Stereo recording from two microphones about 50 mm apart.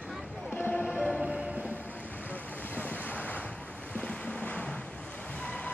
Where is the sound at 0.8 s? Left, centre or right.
Centre.